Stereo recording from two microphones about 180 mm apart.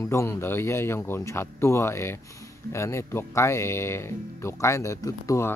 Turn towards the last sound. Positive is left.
turn(degrees=15)  # may be behind; listen again after turning